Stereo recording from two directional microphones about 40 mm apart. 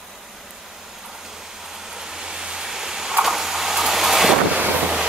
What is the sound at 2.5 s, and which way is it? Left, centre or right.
Vehicle, centre.